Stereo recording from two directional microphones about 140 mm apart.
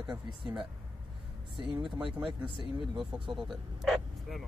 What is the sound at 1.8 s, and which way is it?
Speech, centre (ahead or behind).